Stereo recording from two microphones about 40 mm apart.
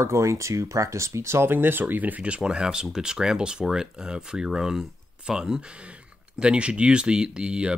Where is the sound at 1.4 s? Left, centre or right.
Right.